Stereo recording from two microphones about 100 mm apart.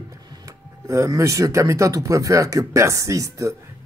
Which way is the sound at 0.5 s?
30° right (ahead or behind).